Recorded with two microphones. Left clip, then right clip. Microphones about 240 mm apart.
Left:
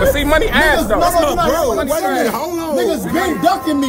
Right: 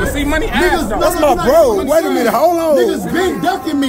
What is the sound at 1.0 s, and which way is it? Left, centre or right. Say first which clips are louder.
Speech: right 5 dB; centre.